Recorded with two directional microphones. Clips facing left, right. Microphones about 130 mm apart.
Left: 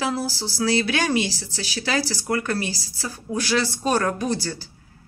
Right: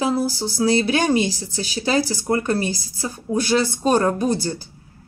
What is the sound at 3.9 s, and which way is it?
Speech, 25° right (ahead or behind).